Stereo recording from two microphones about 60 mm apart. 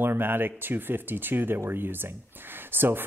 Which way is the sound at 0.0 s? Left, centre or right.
Right.